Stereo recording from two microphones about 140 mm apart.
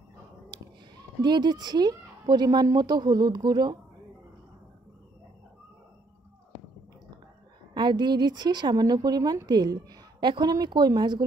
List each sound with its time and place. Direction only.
1.2 s a woman's voice: 30° right (ahead or behind)
7.7 s a woman's voice: 30° right (ahead or behind)